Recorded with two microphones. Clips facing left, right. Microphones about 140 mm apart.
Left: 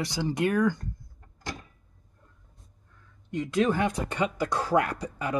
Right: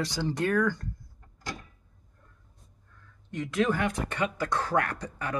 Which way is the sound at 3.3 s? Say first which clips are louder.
Left 2 dB; 20° left (ahead or behind).